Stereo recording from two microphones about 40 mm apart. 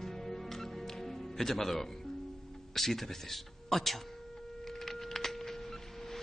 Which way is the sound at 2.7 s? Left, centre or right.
Centre.